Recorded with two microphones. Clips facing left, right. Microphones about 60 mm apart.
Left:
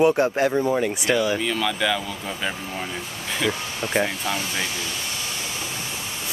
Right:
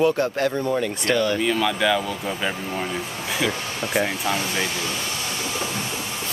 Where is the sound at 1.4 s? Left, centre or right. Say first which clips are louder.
Right 3 dB; centre.